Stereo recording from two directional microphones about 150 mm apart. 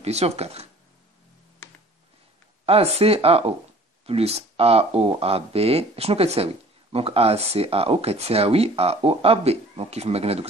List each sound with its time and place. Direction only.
0.0 s speech: 45° right (ahead or behind)
2.6 s speech: 40° right (ahead or behind)